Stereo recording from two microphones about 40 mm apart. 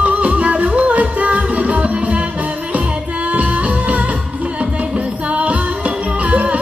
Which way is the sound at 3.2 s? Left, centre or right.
Right.